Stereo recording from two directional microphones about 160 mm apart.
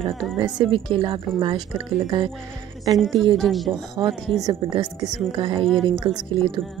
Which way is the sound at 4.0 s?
25° right (ahead or behind).